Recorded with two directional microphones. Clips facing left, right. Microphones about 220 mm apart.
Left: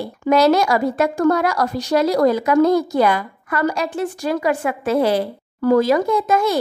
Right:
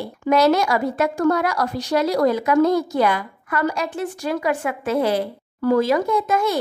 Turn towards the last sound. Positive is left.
turn(degrees=40)  # may be behind; listen again after turning